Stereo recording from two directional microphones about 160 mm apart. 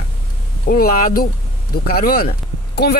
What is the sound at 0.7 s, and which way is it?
Speech, 65° left (ahead or behind).